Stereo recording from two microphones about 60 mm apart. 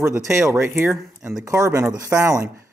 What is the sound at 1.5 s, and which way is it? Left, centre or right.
Speech, right.